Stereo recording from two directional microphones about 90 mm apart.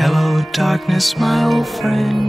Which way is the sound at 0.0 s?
Centre (ahead or behind).